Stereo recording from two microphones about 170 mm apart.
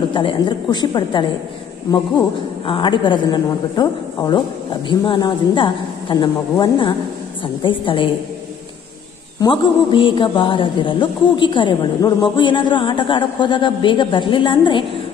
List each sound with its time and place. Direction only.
0.1 s a man's voice: 30° left (ahead or behind)
2.6 s a man's voice: 30° left (ahead or behind)
9.4 s a man's voice: 25° left (ahead or behind)